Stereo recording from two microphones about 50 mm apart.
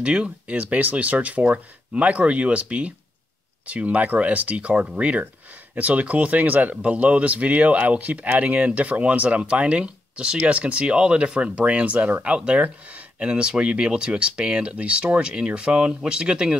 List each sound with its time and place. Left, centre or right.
0.0 s speech: right